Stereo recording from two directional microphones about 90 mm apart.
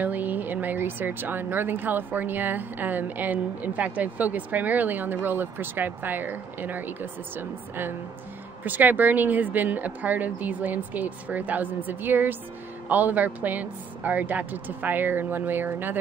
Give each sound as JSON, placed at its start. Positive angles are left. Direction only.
{"t": 0.0, "sound": "speech", "side_deg": -20}